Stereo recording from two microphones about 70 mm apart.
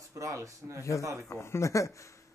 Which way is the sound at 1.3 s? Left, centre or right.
Left.